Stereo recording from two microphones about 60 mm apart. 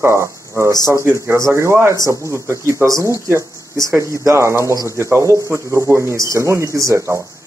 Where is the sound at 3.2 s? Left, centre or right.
Right.